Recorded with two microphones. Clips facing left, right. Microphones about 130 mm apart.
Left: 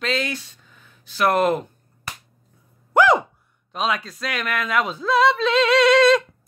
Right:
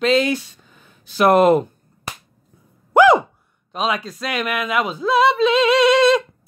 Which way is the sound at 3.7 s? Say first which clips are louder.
Right 2 dB; 5° right (ahead or behind).